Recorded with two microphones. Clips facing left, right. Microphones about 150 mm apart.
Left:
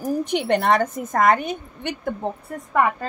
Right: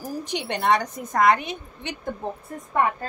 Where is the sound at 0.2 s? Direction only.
55° left (ahead or behind).